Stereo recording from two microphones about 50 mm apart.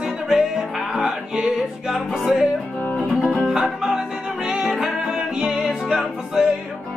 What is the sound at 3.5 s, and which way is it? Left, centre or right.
Music, centre.